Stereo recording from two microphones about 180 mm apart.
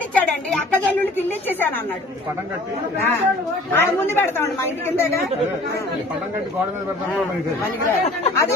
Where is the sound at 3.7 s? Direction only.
10° left (ahead or behind).